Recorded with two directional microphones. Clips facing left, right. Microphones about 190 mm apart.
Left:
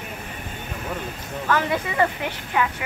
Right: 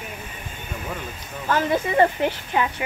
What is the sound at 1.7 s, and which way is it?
Speech, 30° right (ahead or behind).